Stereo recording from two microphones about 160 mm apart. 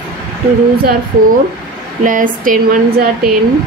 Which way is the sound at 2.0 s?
60° right (ahead or behind).